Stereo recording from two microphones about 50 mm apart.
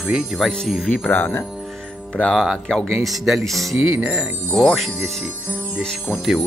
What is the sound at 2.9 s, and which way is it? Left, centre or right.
Speech, centre.